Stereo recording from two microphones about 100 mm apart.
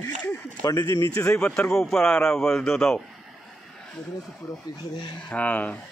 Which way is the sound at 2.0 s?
20° left (ahead or behind).